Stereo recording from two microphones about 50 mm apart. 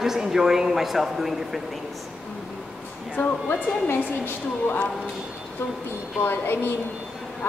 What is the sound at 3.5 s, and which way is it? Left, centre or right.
A woman's voice, left.